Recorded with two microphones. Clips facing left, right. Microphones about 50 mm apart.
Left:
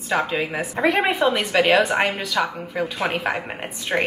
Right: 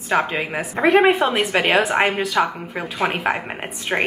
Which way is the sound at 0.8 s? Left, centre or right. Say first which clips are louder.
Right 5 dB; centre.